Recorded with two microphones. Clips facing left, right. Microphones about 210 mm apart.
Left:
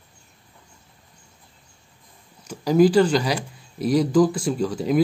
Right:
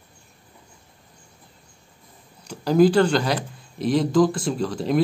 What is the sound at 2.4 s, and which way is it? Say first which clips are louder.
Speech: even; 5° left (ahead or behind).